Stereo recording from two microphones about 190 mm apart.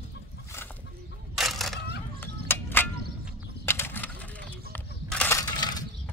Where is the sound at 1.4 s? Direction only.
Centre (ahead or behind).